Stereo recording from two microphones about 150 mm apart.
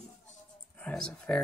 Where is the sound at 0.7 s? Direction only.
5° left (ahead or behind).